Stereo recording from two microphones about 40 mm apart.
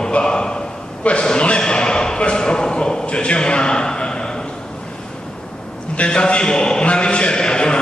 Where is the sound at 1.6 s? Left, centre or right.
Left.